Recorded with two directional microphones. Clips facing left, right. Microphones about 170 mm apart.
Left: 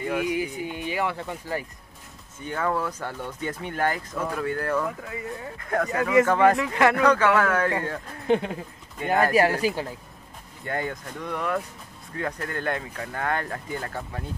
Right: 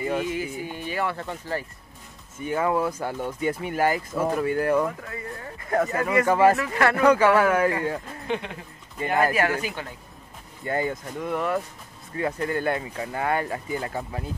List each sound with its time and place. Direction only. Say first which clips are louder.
0.2 s speech: left 2 dB; 15° left (ahead or behind)
2.3 s speech: right 3 dB; 10° right (ahead or behind)
6.6 s speech: left 2 dB; 15° left (ahead or behind)
7.0 s speech: right 2 dB; 10° right (ahead or behind)
8.3 s speech: left 7 dB; 40° left (ahead or behind)
8.9 s speech: even; centre (ahead or behind)
9.3 s speech: left 4 dB; 35° left (ahead or behind)
10.6 s speech: right 3 dB; 5° right (ahead or behind)